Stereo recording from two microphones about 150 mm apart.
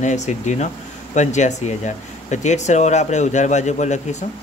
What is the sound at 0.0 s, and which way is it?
A man's voice, 50° left (ahead or behind).